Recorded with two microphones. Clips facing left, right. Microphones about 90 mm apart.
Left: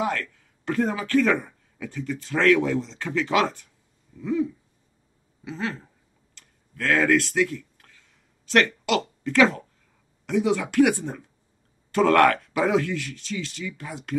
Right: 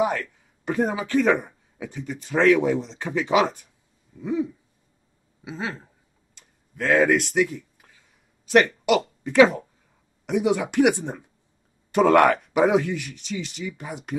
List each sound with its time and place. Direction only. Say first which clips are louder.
0.0 s speech: right 3 dB; 15° right (ahead or behind)
6.3 s tick-tock: right 2 dB; 15° right (ahead or behind)
8.5 s speech: right 3 dB; 15° right (ahead or behind)